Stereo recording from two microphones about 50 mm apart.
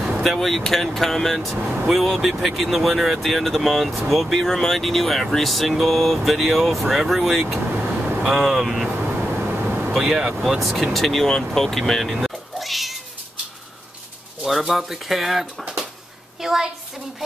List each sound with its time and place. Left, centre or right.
0.4 s speech: centre
9.2 s vehicle: right
9.9 s speech: centre
10.6 s speech: centre
12.5 s cat: centre
14.4 s speech: centre
15.6 s a sound: centre
16.3 s a woman's voice: centre